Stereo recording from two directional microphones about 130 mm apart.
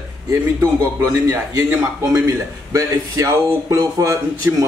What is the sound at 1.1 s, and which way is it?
A man's voice, 20° right (ahead or behind).